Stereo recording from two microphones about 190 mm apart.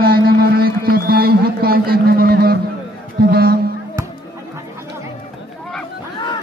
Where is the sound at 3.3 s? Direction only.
55° right (ahead or behind).